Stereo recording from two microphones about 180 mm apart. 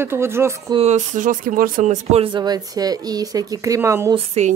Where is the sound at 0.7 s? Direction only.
40° right (ahead or behind).